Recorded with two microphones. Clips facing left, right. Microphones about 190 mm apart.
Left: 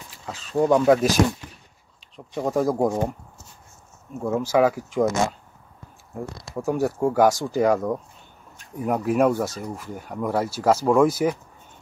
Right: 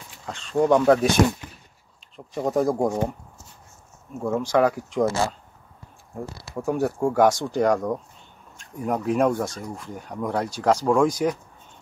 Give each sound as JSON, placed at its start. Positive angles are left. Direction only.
{"t": 0.3, "sound": "speech", "side_deg": 5}
{"t": 4.2, "sound": "speech", "side_deg": 5}
{"t": 5.0, "sound": "speech", "side_deg": -35}
{"t": 6.4, "sound": "speech", "side_deg": 0}